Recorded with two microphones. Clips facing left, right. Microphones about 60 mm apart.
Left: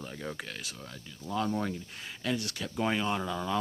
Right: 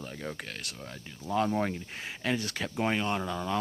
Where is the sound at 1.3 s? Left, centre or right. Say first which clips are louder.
Right 3 dB; right.